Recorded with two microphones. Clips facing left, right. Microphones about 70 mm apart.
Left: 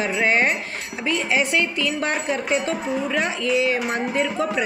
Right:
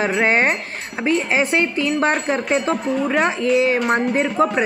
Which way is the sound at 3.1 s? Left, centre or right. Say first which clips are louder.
Right 5 dB; right.